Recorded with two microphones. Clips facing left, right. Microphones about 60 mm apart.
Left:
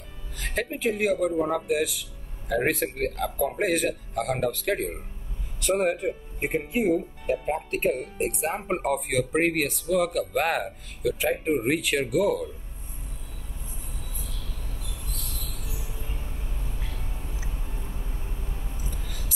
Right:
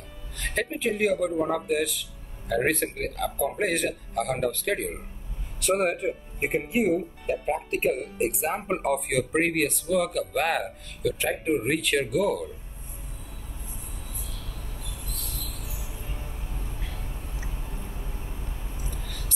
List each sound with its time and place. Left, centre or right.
0.4 s speech: centre
15.1 s train wheels squealing: centre
19.0 s a sound: centre